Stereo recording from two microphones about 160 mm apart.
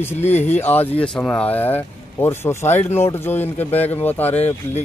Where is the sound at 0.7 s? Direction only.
10° left (ahead or behind).